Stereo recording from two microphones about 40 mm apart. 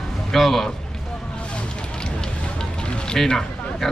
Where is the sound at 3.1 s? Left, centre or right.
Centre.